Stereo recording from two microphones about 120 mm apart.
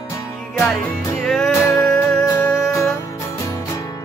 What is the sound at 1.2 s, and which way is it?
Music, 5° left (ahead or behind).